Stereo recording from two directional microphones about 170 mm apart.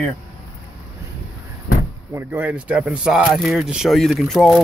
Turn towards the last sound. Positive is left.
turn(degrees=0)  # may be behind; listen again after turning